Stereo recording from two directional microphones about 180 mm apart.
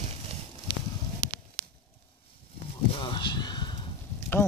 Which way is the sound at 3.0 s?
30° left (ahead or behind).